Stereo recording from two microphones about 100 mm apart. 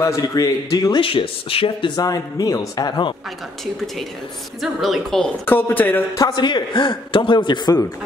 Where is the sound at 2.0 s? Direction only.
40° left (ahead or behind).